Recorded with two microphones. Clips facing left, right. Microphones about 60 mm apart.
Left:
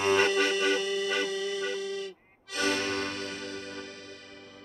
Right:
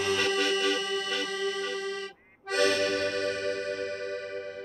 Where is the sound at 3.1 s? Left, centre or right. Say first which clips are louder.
Right 7 dB; right.